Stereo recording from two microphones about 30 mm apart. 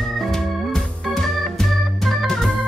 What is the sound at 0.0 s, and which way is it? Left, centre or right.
Organ, centre.